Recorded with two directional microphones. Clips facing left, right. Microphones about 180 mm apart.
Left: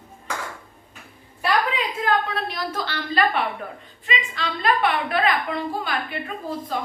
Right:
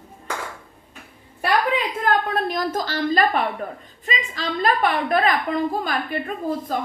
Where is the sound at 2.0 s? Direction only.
50° right (ahead or behind).